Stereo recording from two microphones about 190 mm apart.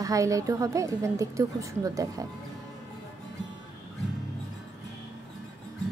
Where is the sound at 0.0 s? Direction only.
15° right (ahead or behind).